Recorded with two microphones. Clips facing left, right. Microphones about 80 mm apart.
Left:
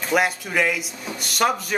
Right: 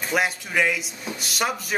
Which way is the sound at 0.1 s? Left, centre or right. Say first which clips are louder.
Left 3 dB; centre.